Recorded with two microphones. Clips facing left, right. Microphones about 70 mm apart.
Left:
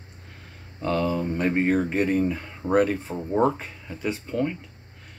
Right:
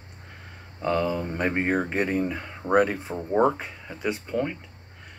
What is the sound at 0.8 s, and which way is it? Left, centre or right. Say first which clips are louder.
Speech: left 1 dB; right.